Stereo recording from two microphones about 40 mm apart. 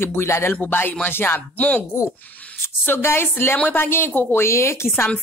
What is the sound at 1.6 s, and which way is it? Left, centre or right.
Speech, left.